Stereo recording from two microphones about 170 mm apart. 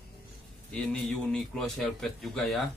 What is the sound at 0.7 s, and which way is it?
Speech, 5° left (ahead or behind).